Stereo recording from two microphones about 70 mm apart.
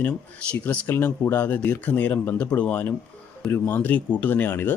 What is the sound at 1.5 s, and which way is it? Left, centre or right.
Speech, left.